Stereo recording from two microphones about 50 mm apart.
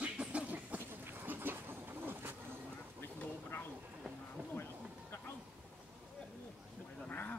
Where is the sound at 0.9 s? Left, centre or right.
Right.